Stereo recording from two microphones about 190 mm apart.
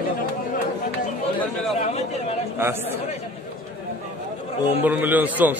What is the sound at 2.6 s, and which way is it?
Speech, 10° right (ahead or behind).